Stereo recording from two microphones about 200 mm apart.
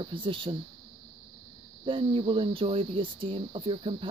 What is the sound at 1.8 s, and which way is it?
Speech, 25° right (ahead or behind).